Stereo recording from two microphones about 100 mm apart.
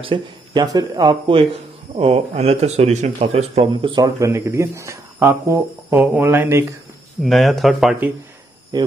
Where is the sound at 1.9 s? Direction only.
70° right (ahead or behind).